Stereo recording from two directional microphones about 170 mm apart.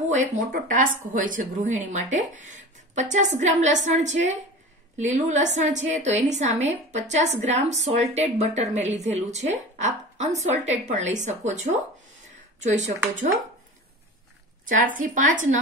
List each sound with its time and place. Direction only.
0.1 s a woman's voice: 50° right (ahead or behind)
14.7 s a woman's voice: 50° right (ahead or behind)